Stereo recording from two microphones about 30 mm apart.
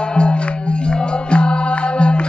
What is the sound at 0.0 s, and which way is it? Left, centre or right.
Music, left.